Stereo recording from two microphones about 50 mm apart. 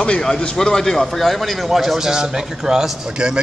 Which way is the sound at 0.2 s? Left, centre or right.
Centre.